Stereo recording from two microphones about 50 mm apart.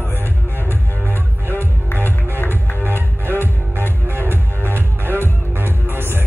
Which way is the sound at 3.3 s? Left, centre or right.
Right.